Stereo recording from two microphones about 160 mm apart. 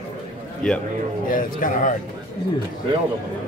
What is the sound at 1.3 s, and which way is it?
Speech, 55° left (ahead or behind).